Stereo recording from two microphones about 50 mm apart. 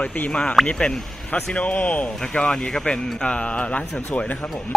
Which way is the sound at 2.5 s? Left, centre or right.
Centre.